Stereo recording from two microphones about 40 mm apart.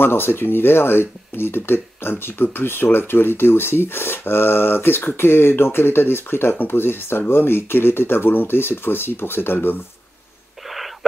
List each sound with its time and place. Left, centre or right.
0.0 s speech: left
6.5 s speech: left